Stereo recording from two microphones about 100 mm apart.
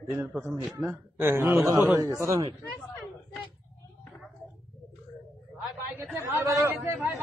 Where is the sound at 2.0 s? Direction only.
35° right (ahead or behind).